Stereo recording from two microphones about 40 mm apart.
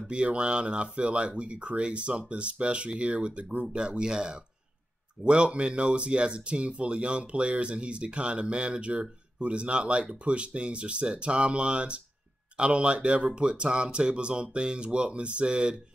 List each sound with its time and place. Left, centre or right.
0.1 s speech: right